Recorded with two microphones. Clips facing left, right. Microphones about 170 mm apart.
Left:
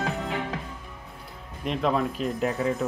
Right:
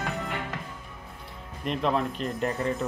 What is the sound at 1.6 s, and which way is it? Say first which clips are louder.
Speech: left 1 dB; centre (ahead or behind).